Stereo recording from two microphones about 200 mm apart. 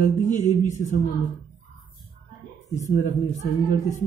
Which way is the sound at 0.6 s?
40° left (ahead or behind).